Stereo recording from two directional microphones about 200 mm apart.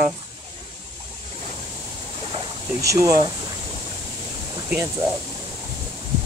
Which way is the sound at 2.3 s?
15° right (ahead or behind).